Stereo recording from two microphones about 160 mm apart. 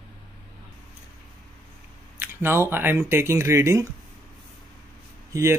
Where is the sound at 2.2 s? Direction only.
15° right (ahead or behind).